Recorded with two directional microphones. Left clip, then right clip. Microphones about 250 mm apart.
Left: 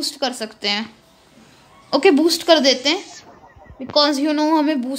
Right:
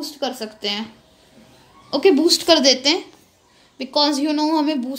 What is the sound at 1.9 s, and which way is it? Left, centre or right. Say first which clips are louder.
A woman's voice: left 1 dB; centre.